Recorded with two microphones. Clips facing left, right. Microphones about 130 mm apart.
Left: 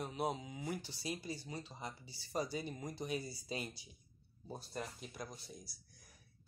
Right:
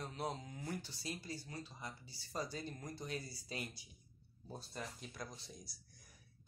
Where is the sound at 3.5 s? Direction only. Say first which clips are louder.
Left 2 dB; 25° left (ahead or behind).